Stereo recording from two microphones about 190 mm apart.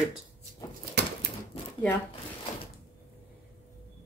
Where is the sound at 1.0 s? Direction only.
60° right (ahead or behind).